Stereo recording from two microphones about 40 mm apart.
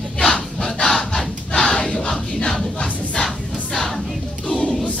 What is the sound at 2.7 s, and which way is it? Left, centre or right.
Music, left.